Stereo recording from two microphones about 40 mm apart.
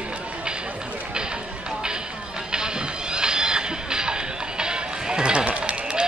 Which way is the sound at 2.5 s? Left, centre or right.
Centre.